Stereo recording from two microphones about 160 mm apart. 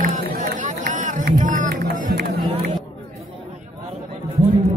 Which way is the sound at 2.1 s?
80° right.